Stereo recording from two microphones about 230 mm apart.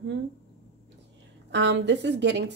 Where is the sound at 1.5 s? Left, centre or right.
Right.